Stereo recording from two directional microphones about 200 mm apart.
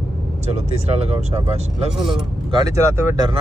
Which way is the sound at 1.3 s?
30° right (ahead or behind).